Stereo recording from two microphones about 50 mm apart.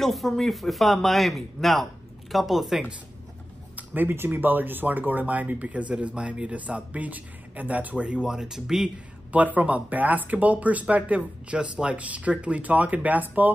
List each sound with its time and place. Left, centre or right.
0.0 s speech: centre
3.7 s a sound: right
4.3 s speech: right; by 8.9 s centre
9.3 s speech: right